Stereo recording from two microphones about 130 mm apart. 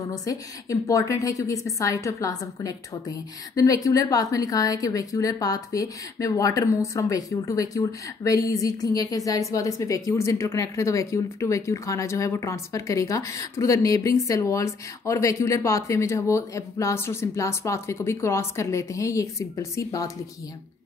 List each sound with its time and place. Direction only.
0.1 s a woman's voice: 25° left (ahead or behind)